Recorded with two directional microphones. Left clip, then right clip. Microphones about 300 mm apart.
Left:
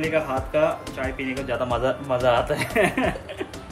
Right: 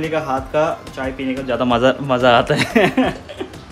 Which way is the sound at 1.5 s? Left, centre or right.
Right.